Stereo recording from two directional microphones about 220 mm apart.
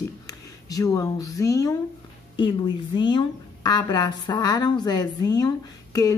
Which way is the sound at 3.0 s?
20° left (ahead or behind).